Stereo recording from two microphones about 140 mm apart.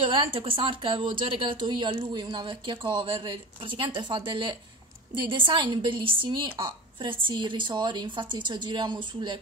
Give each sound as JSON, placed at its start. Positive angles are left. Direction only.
{"t": 0.1, "sound": "speech", "side_deg": -40}